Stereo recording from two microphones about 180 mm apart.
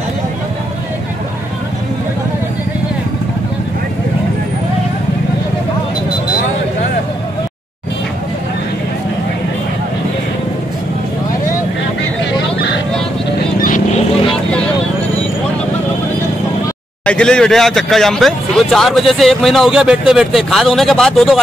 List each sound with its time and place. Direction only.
13.6 s vehicle: 45° left (ahead or behind)
17.0 s speech: 5° left (ahead or behind)